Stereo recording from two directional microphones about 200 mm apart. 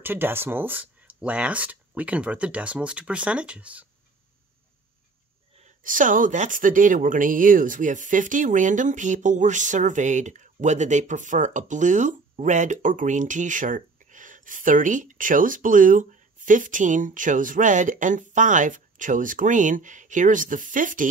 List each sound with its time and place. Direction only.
0.0 s speech: 10° right (ahead or behind)
5.6 s speech: 40° right (ahead or behind)